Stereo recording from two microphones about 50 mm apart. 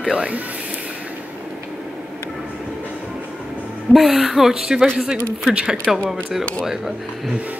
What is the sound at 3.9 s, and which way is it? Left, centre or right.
Speech, centre.